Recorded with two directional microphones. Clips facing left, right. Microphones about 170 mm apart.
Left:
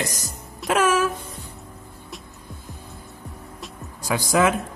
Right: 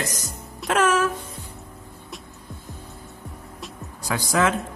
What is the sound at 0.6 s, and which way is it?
Speech, 10° left (ahead or behind).